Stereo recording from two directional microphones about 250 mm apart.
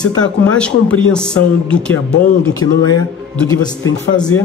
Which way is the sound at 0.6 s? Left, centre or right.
Centre.